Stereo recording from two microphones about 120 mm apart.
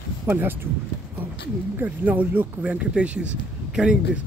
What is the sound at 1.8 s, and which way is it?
Speech, 15° right (ahead or behind).